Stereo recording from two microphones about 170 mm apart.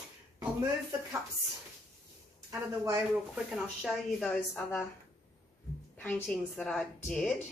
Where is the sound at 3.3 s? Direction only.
Centre (ahead or behind).